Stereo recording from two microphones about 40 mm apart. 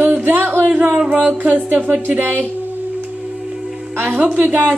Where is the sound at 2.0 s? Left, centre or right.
Right.